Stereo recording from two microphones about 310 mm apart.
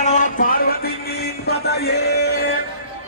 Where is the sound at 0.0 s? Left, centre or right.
Left.